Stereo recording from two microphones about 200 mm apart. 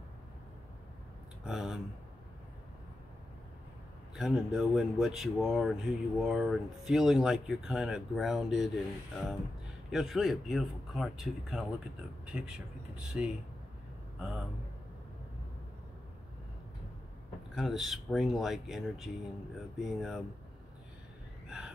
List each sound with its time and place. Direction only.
1.4 s speech: 5° right (ahead or behind)
4.1 s speech: centre (ahead or behind)
17.6 s speech: centre (ahead or behind)
21.5 s a sound: 5° right (ahead or behind)